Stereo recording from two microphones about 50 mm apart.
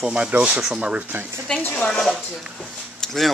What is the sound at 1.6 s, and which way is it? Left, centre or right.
Speech, left.